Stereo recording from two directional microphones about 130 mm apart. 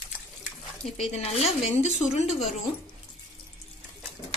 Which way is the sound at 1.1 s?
55° left (ahead or behind).